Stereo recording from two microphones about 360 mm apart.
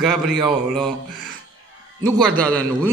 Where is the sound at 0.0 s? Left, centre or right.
Centre.